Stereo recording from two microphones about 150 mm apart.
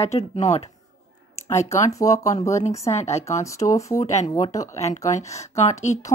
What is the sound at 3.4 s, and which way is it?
Speech, 20° left (ahead or behind).